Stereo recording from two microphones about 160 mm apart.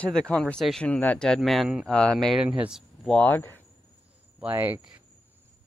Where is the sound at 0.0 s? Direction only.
5° left (ahead or behind).